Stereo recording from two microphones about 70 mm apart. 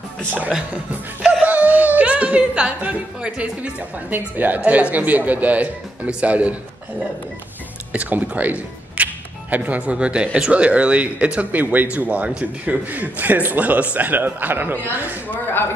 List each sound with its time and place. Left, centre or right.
0.3 s speech: right
7.9 s speech: centre
15.2 s speech: left